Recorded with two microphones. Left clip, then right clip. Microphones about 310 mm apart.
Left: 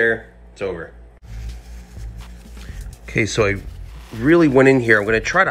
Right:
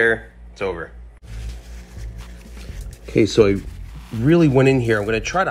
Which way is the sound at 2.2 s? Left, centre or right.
Centre.